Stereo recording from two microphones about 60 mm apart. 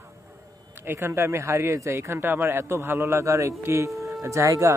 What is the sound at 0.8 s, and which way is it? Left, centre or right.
Speech, right.